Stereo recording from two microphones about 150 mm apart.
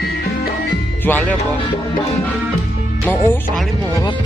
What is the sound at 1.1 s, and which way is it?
Speech, 10° left (ahead or behind).